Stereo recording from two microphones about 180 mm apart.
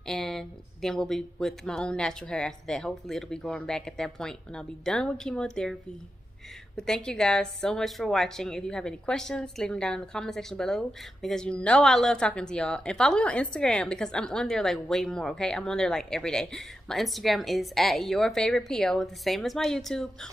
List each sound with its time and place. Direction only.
0.0 s a woman's voice: centre (ahead or behind)
6.8 s a woman's voice: 5° left (ahead or behind)